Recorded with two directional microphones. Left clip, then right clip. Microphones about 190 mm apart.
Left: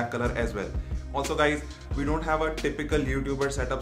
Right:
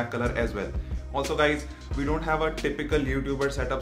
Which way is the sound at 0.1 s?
5° left (ahead or behind).